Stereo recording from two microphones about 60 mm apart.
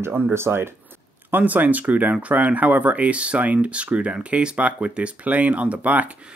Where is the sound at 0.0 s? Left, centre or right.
Right.